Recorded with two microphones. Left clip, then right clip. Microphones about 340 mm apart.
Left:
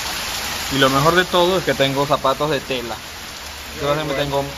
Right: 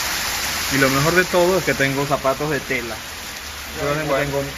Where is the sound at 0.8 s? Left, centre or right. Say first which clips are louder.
Left 3 dB; centre.